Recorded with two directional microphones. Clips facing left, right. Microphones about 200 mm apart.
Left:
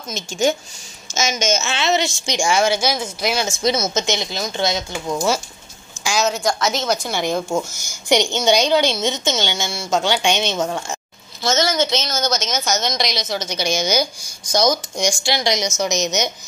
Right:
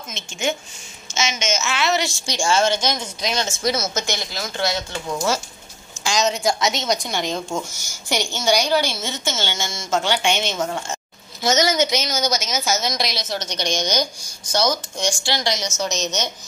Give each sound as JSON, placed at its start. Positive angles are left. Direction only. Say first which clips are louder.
{"t": 0.1, "sound": "a woman's voice", "louder": "left 6 dB", "side_deg": 40}
{"t": 3.6, "sound": "a woman's voice", "louder": "left 4 dB", "side_deg": 20}
{"t": 6.0, "sound": "a woman's voice", "louder": "left 1 dB", "side_deg": 5}
{"t": 11.4, "sound": "a woman's voice", "louder": "even", "side_deg": -15}